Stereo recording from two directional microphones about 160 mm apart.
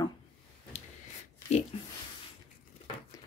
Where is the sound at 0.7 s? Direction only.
45° left (ahead or behind).